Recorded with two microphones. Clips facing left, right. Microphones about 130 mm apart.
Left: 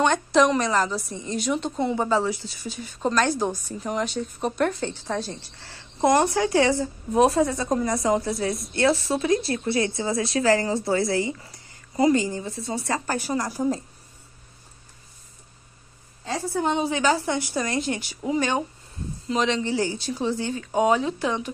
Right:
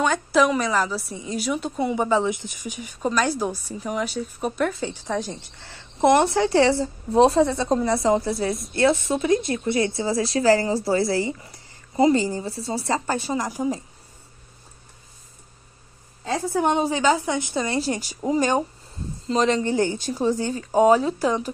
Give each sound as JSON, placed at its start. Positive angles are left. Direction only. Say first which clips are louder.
{"t": 0.0, "sound": "a woman's voice", "louder": "even", "side_deg": -5}
{"t": 5.1, "sound": "speech", "louder": "right 2 dB", "side_deg": -15}
{"t": 16.9, "sound": "a woman's voice", "louder": "right 2 dB", "side_deg": -20}